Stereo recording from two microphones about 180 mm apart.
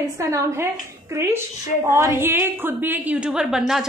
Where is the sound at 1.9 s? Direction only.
15° right (ahead or behind).